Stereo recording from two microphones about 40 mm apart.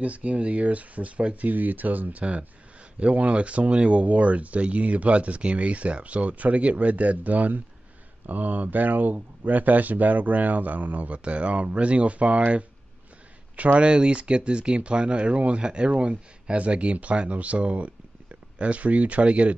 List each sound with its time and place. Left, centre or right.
0.0 s speech: right
13.7 s speech: right